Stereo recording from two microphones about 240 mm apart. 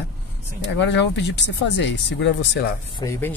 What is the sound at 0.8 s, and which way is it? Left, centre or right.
Speech, left.